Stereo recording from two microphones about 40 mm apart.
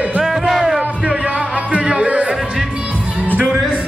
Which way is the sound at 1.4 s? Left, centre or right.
Right.